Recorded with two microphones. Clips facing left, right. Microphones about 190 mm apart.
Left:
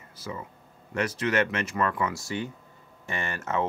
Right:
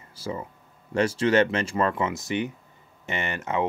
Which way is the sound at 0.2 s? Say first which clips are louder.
Right 5 dB; 30° right (ahead or behind).